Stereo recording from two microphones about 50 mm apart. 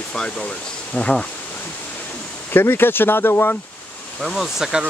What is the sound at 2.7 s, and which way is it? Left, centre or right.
Speech, left.